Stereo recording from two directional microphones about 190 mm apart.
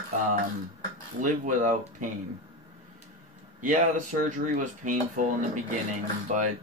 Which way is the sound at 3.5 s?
45° right (ahead or behind).